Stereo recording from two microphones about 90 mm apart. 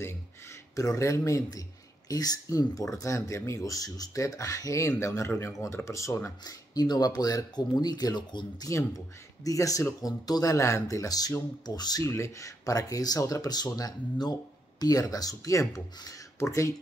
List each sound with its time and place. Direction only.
0.7 s speech: 35° left (ahead or behind); by 8.6 s 55° left (ahead or behind)
9.4 s speech: 40° left (ahead or behind)
12.0 s speech: 35° left (ahead or behind)